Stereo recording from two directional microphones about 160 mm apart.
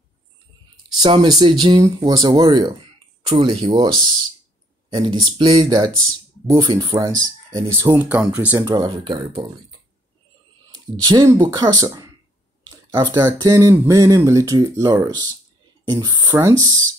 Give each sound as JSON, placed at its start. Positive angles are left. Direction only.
{"t": 1.0, "sound": "speech", "side_deg": -35}
{"t": 3.3, "sound": "speech", "side_deg": -35}
{"t": 5.5, "sound": "speech", "side_deg": -25}
{"t": 7.8, "sound": "speech", "side_deg": -10}
{"t": 8.6, "sound": "speech", "side_deg": -25}
{"t": 10.7, "sound": "speech", "side_deg": -25}